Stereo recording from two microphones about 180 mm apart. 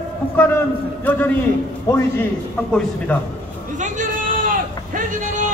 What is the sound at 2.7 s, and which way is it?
Speech, 10° left (ahead or behind).